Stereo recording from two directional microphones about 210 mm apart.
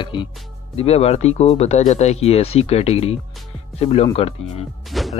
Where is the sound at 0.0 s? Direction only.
20° left (ahead or behind).